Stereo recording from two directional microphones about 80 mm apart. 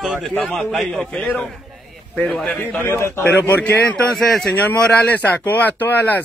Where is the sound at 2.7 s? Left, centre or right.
Left.